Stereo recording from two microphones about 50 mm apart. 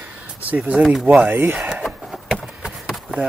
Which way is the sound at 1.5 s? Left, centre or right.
Centre.